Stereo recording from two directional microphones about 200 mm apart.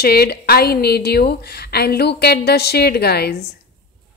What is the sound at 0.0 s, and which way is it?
A woman's voice, 50° left (ahead or behind).